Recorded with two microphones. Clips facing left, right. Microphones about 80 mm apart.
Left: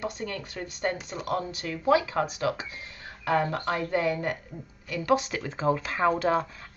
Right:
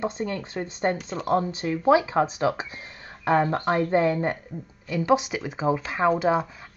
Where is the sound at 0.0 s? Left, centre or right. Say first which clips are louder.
Right 5 dB; right.